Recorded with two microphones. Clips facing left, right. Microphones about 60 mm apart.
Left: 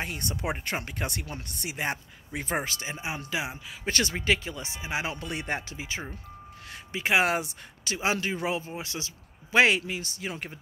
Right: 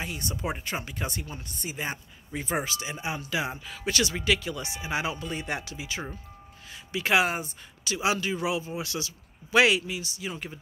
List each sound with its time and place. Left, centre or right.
0.0 s speech: left
1.2 s speech: left
3.3 s speech: centre
3.8 s speech: left
5.1 s speech: left
5.5 s speech: left
7.2 s speech: left
7.8 s speech: left